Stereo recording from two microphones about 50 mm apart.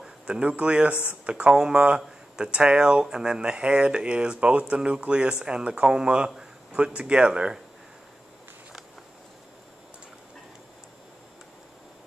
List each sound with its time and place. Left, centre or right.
0.0 s a man's voice: centre